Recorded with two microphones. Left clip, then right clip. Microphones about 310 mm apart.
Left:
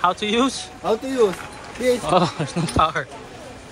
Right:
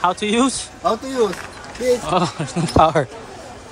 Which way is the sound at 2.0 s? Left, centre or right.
Centre.